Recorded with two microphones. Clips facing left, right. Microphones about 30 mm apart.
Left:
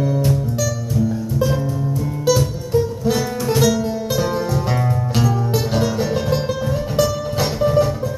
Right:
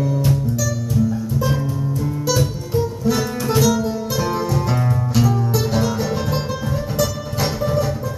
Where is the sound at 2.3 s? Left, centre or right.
Centre.